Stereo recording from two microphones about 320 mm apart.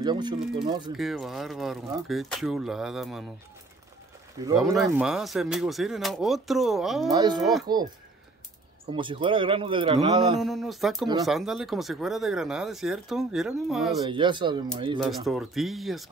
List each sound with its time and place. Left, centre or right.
0.0 s speech: centre
0.9 s speech: centre
4.6 s speech: centre
7.1 s speech: centre
7.3 s speech: centre
7.6 s speech: centre
8.9 s speech: centre
10.4 s speech: centre
14.0 s speech: centre
15.0 s speech: centre